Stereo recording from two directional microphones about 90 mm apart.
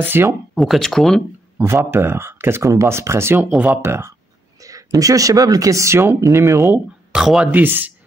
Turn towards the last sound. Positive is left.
turn(degrees=-20)  # may be behind; listen again after turning